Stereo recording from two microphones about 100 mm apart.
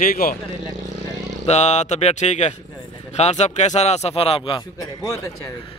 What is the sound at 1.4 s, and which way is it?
Speech, 90° left.